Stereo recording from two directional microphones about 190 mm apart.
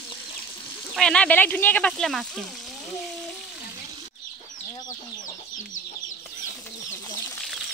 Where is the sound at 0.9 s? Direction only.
5° left (ahead or behind).